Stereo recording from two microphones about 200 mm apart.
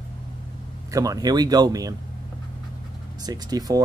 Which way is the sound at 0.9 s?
15° right (ahead or behind).